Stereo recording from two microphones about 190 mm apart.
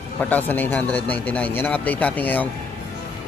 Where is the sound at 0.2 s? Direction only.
10° left (ahead or behind).